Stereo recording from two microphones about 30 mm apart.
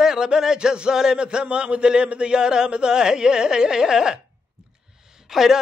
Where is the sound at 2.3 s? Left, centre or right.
Right.